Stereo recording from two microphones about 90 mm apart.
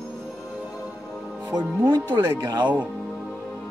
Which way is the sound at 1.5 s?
50° right (ahead or behind).